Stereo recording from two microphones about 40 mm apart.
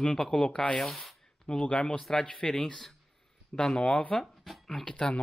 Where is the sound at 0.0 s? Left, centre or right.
Centre.